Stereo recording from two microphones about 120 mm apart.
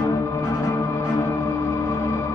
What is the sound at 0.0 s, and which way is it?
Music, 25° left (ahead or behind).